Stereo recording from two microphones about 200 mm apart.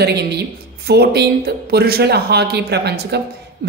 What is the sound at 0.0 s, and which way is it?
A woman's voice, 55° right (ahead or behind).